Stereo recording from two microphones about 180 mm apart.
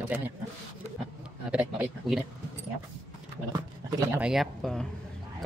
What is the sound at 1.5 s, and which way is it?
Speech, 5° right (ahead or behind).